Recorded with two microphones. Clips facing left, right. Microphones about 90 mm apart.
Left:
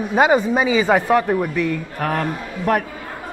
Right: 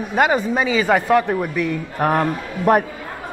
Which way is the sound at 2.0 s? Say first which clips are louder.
Right 5 dB; 25° right (ahead or behind).